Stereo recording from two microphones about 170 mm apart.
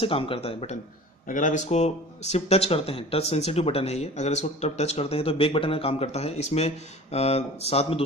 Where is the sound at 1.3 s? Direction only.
50° left (ahead or behind).